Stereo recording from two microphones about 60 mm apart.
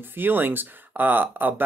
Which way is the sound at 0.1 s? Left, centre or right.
Right.